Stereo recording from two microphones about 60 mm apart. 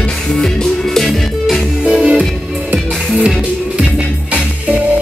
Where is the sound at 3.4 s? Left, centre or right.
Centre.